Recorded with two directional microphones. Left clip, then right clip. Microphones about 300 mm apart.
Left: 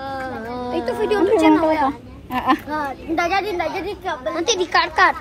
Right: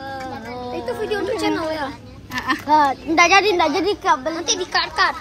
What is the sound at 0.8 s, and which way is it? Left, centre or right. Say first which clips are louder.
Speech: left 3 dB; left.